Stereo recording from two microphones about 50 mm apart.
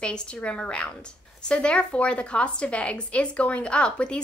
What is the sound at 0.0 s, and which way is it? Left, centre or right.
A woman's voice, left.